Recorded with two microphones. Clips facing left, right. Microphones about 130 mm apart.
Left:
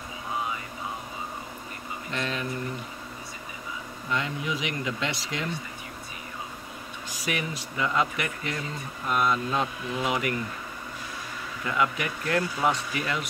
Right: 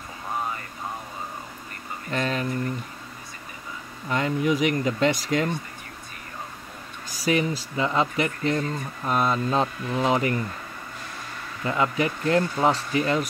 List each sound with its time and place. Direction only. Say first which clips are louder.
2.0 s a sound: right 5 dB; 45° right (ahead or behind)
4.1 s speech: right 7 dB; 45° right (ahead or behind)
7.1 s speech: right 8 dB; 35° right (ahead or behind)
11.6 s speech: right 4 dB; 30° right (ahead or behind)